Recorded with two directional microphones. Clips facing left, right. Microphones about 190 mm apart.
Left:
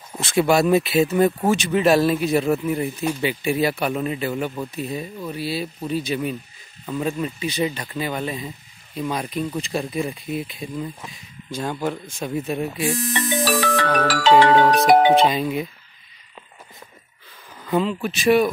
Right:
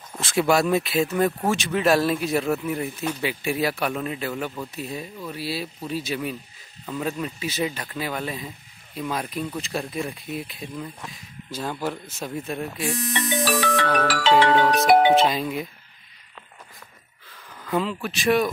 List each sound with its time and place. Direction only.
0.2 s speech: centre (ahead or behind)
13.1 s speech: 40° left (ahead or behind)
15.2 s speech: centre (ahead or behind)
17.6 s speech: centre (ahead or behind)